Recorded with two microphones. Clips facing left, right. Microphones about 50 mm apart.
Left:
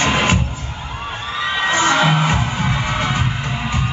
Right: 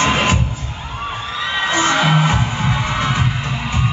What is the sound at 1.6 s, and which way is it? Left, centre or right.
Music, left.